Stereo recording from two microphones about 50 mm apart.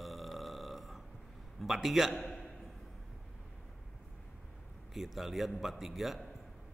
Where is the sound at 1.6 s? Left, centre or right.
Centre.